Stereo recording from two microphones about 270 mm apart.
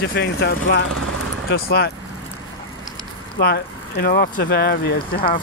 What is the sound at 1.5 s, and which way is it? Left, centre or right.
Speech, left.